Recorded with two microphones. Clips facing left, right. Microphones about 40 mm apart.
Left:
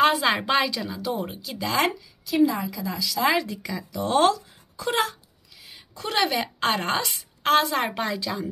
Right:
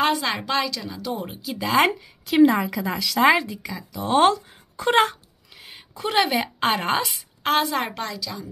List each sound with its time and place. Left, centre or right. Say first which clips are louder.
0.0 s a woman's voice: left 2 dB; centre
1.8 s a woman's voice: right 5 dB; right
3.4 s speech: left 1 dB; centre
4.2 s speech: right 3 dB; right
5.9 s a woman's voice: right 3 dB; centre
7.9 s a woman's voice: left 3 dB; centre